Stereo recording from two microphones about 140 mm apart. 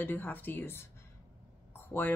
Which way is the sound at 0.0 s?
15° left (ahead or behind).